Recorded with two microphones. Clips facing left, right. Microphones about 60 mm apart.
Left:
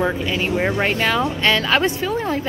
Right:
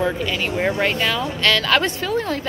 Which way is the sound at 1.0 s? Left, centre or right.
Left.